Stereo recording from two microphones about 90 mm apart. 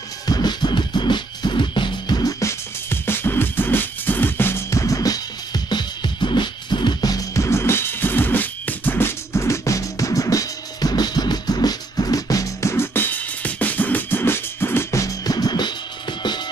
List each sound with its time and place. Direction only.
0.3 s music: 50° left (ahead or behind)
2.4 s music: 25° left (ahead or behind); by 16.3 s 55° left (ahead or behind)